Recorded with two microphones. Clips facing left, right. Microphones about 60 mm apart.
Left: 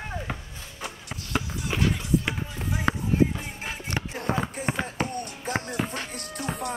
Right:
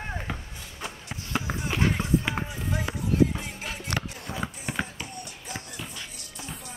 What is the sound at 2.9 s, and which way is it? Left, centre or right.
Music, left.